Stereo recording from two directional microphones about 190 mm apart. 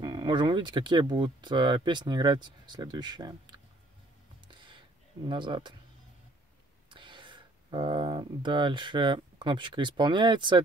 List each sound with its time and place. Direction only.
0.0 s speech: 25° right (ahead or behind)
4.5 s a sound: 25° right (ahead or behind)
6.9 s speech: 25° right (ahead or behind)